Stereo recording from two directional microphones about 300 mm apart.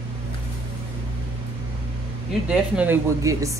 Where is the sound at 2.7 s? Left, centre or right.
Centre.